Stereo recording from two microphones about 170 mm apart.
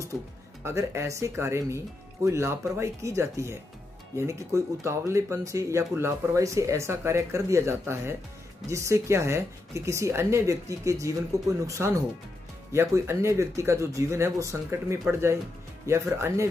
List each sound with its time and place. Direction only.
0.7 s speech: 15° right (ahead or behind)